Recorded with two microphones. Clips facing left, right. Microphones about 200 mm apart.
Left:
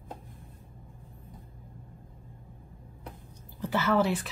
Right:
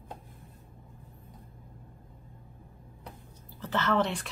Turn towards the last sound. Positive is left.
turn(degrees=5)  # may be behind; listen again after turning